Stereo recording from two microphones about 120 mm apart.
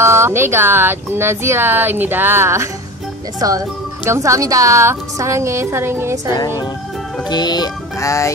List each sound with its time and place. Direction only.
0.0 s speech: 20° right (ahead or behind)
6.3 s music: 30° left (ahead or behind)